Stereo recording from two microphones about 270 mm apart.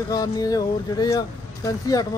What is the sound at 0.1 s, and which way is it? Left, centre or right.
Speech, centre.